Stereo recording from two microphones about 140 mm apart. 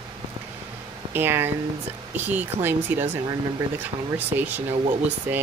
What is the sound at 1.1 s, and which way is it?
Speech, 15° right (ahead or behind).